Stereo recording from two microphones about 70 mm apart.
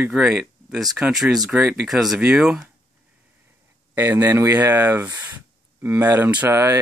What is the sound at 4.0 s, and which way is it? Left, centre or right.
Speech, right.